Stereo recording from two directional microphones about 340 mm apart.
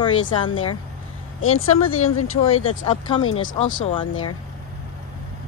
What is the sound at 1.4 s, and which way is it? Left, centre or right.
Speech, left.